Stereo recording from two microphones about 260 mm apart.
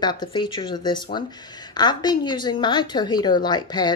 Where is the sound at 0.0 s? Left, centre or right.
Centre.